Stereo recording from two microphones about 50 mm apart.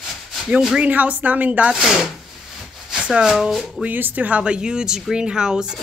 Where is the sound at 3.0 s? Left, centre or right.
Right.